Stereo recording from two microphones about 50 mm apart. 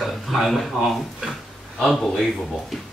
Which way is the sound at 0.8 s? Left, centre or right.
Centre.